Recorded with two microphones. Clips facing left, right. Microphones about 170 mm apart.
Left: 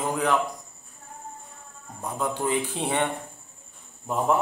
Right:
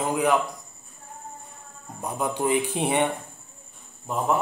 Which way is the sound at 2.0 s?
15° right (ahead or behind).